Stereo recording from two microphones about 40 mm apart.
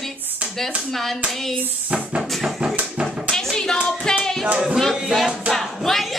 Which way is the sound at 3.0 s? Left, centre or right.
Centre.